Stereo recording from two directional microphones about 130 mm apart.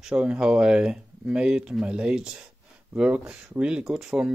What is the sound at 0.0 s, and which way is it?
Speech, 10° right (ahead or behind).